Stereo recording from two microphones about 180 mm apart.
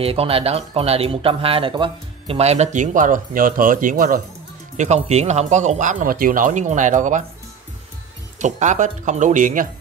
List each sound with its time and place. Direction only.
0.0 s speech: 30° right (ahead or behind); by 4.2 s 50° right (ahead or behind)
4.7 s speech: 40° right (ahead or behind)
8.4 s speech: 40° right (ahead or behind)